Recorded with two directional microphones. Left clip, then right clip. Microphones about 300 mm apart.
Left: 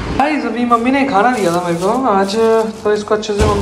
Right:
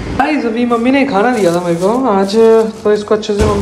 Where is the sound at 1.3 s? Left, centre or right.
Left.